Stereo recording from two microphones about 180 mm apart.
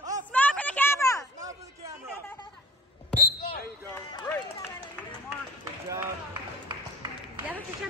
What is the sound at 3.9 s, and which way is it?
Run, 25° left (ahead or behind).